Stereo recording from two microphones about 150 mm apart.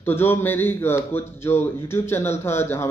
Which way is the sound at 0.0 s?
15° left (ahead or behind).